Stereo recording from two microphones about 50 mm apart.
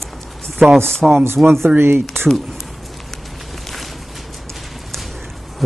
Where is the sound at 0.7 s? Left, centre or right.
Centre.